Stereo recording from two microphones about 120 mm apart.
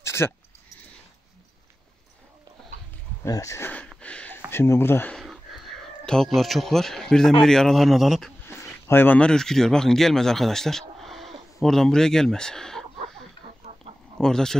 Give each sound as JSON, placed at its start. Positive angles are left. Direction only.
{"t": 0.0, "sound": "a sound", "side_deg": 20}
{"t": 3.3, "sound": "speech", "side_deg": 25}
{"t": 4.0, "sound": "a sound", "side_deg": 10}
{"t": 4.5, "sound": "speech", "side_deg": 20}
{"t": 5.1, "sound": "a sound", "side_deg": 0}
{"t": 7.4, "sound": "a man's voice", "side_deg": 5}
{"t": 8.5, "sound": "speech", "side_deg": 20}
{"t": 13.7, "sound": "chicken", "side_deg": -55}
{"t": 14.1, "sound": "speech", "side_deg": 5}